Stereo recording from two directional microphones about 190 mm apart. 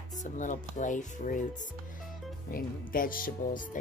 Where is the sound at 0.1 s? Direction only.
40° left (ahead or behind).